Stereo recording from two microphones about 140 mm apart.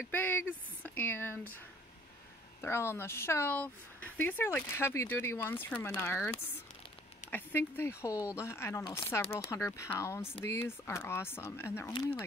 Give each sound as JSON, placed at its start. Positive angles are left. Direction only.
{"t": 0.0, "sound": "speech", "side_deg": 15}
{"t": 2.6, "sound": "speech", "side_deg": 20}
{"t": 11.9, "sound": "speech", "side_deg": 35}